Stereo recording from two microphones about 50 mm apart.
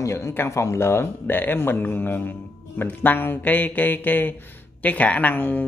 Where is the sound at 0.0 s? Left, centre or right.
Left.